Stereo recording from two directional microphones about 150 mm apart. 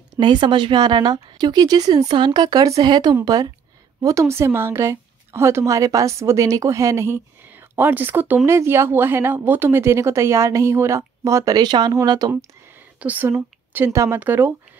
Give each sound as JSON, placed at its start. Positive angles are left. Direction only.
{"t": 0.2, "sound": "a woman's voice", "side_deg": -30}
{"t": 13.0, "sound": "a woman's voice", "side_deg": -10}